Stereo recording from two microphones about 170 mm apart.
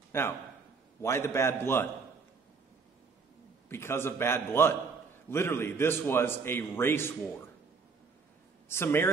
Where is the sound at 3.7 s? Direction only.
15° left (ahead or behind).